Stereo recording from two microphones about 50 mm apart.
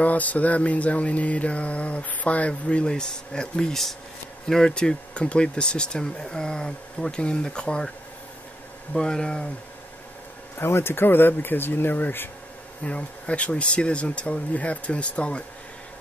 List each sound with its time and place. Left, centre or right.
0.0 s mantra: left; by 3.9 s centre
4.5 s speech: centre
8.9 s speech: centre
10.6 s speech: left
12.8 s mantra: left